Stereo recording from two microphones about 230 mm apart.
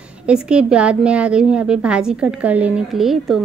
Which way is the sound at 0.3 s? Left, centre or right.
Centre.